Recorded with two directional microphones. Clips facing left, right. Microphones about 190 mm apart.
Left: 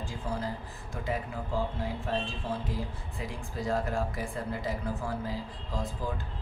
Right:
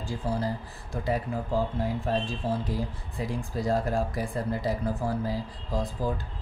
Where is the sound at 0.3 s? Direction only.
35° right (ahead or behind).